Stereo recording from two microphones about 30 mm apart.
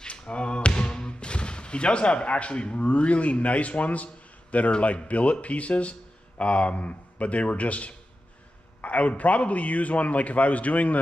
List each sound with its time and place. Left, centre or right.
0.0 s music: left
2.8 s a man's voice: left